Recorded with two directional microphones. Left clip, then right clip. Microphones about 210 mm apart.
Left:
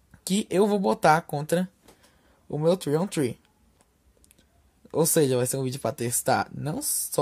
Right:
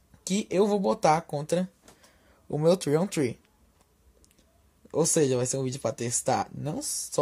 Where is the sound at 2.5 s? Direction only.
5° left (ahead or behind).